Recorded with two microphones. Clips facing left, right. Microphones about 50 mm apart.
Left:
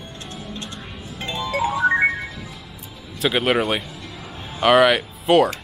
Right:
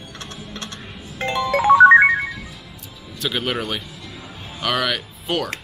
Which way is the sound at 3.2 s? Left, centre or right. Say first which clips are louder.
Left 5 dB; centre.